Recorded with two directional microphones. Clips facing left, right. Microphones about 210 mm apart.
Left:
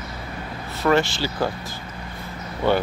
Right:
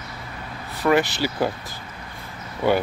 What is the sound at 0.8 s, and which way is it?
Speech, 15° right (ahead or behind).